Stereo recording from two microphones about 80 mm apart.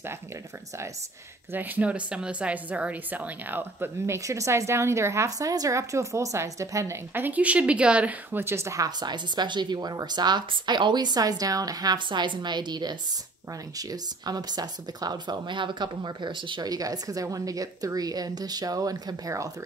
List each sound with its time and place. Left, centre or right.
1.5 s speech: right
4.0 s speech: right
7.2 s speech: right
9.0 s speech: right
12.1 s speech: right
13.7 s speech: right
16.6 s a woman's voice: right